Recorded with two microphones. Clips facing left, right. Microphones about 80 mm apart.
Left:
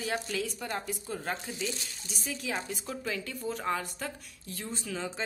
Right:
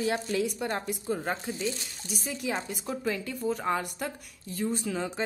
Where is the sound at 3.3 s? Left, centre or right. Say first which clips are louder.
Right 5 dB; centre.